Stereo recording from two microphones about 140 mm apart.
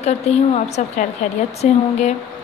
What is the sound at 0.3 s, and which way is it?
A woman's voice, 50° left (ahead or behind).